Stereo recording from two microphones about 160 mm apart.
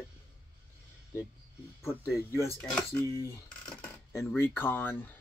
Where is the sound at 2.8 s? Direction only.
15° left (ahead or behind).